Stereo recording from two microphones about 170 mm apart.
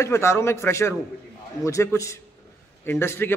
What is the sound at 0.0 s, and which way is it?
A man's voice, 15° left (ahead or behind).